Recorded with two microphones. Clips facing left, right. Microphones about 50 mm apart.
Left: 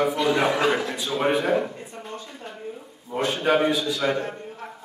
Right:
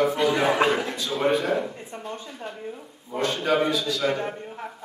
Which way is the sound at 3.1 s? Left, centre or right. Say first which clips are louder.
Left 1 dB; centre.